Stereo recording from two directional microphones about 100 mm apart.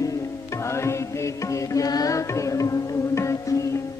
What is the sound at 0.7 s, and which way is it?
Music, 25° left (ahead or behind).